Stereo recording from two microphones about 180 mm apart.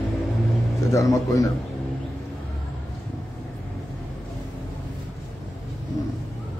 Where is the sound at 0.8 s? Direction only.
20° left (ahead or behind).